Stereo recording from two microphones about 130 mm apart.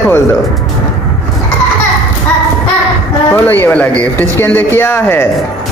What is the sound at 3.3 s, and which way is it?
Speech, 15° left (ahead or behind).